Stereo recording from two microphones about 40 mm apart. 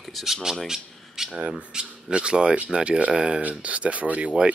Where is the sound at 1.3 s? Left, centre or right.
Right.